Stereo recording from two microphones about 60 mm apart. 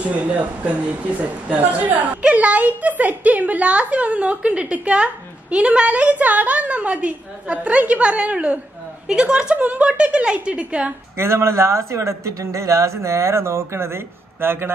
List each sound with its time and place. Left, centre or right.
0.0 s a woman's voice: right
11.1 s speech: right